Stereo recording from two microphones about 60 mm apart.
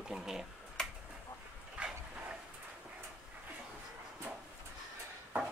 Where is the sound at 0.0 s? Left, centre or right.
Centre.